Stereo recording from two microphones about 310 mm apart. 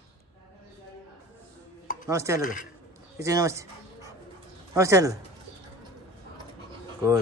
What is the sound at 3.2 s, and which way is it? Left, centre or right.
Dog, centre.